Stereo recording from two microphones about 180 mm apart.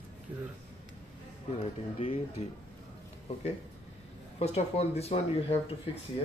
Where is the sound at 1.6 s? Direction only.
30° left (ahead or behind).